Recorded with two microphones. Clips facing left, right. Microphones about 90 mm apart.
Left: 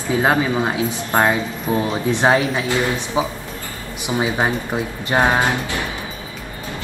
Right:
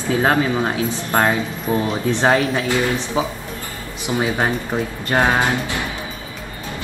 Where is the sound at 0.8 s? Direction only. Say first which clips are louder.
Left 1 dB; 15° left (ahead or behind).